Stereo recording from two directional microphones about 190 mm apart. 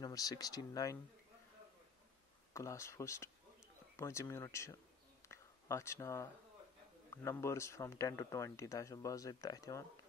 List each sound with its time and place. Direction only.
0.0 s speech: 20° left (ahead or behind)
2.5 s speech: 15° left (ahead or behind)